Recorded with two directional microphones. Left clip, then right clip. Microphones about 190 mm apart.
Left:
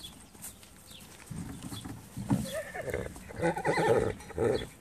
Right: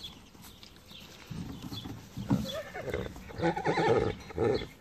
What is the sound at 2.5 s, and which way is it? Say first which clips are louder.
Neigh: left 1 dB; 50° right (ahead or behind).